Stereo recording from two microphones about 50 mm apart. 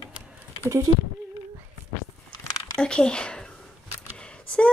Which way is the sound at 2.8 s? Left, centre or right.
Centre.